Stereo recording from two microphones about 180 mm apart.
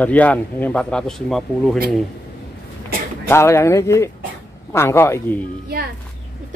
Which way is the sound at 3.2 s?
15° left (ahead or behind).